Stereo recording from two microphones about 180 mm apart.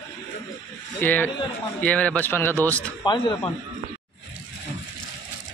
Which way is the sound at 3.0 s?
25° left (ahead or behind).